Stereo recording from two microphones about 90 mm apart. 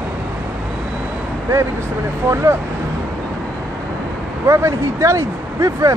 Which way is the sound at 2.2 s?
30° right (ahead or behind).